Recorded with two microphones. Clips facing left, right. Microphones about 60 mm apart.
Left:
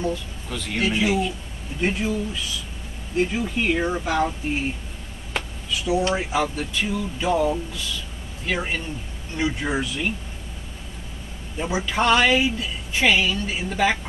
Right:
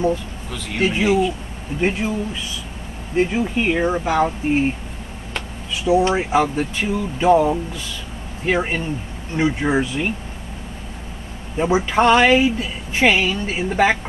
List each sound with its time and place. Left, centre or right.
0.5 s speech: centre
0.7 s a woman's voice: right
3.2 s a woman's voice: right
5.7 s a woman's voice: right
11.5 s a woman's voice: right